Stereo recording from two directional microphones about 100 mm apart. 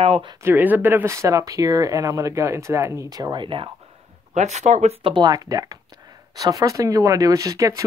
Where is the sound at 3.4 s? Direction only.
60° right (ahead or behind).